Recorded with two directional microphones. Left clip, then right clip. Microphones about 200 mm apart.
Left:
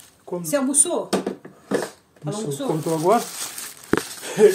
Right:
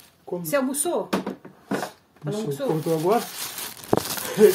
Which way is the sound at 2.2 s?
40° right (ahead or behind).